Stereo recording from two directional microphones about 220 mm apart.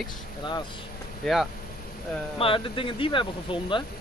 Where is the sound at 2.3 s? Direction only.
25° left (ahead or behind).